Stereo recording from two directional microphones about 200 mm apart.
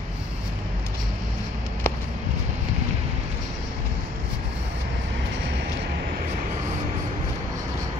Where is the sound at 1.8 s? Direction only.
10° left (ahead or behind).